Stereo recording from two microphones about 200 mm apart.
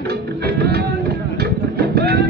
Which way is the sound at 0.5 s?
50° right (ahead or behind).